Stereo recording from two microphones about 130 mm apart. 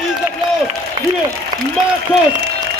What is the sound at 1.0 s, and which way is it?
Applause, 35° right (ahead or behind).